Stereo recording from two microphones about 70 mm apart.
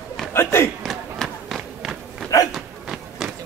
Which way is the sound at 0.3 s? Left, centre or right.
Left.